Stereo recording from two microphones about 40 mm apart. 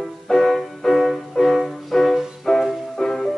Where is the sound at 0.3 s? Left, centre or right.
Centre.